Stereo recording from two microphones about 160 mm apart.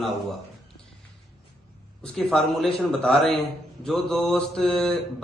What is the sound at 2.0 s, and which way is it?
A man's voice, 5° left (ahead or behind).